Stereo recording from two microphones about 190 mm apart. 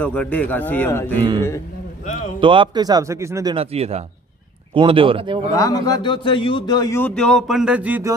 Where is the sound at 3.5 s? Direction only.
35° right (ahead or behind).